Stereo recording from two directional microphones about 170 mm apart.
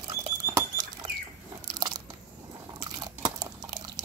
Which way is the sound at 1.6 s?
25° right (ahead or behind).